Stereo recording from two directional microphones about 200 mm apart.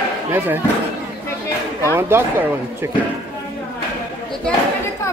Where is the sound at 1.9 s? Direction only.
10° right (ahead or behind).